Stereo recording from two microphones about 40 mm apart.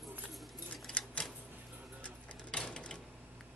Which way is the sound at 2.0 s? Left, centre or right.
Left.